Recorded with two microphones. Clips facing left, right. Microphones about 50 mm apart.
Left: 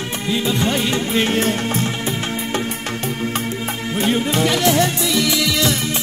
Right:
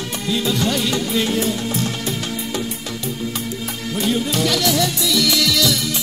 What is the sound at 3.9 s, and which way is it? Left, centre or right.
Music, left.